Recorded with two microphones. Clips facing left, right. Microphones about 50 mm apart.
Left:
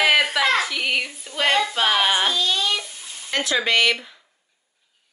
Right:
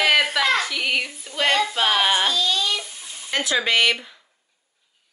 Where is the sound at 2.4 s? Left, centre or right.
Centre.